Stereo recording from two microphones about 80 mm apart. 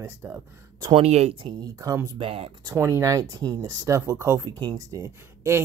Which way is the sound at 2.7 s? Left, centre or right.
Right.